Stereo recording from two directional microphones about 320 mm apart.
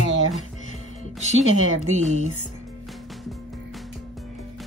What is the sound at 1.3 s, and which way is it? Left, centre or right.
Speech, right.